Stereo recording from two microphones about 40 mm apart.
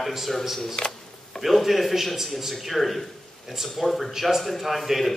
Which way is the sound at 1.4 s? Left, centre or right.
Centre.